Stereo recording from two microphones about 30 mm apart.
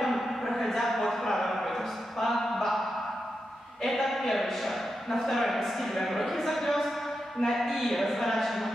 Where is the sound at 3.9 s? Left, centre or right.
Centre.